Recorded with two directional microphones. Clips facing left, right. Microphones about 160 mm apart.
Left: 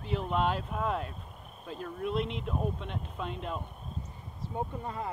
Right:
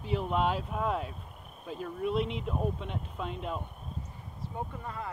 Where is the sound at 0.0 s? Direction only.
5° right (ahead or behind).